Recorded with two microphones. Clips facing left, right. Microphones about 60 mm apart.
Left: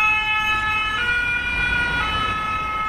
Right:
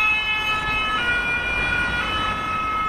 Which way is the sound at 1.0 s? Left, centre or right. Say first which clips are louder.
Left 1 dB; centre.